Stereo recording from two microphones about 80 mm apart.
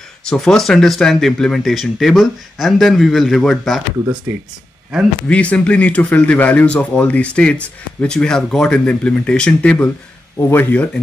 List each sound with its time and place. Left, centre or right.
0.2 s speech: centre
5.3 s speech: centre
10.4 s speech: left